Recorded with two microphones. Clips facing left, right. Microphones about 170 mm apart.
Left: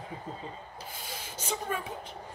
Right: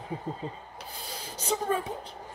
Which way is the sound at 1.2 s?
35° right (ahead or behind).